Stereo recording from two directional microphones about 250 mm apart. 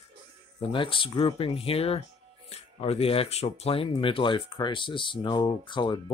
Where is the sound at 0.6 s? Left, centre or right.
Centre.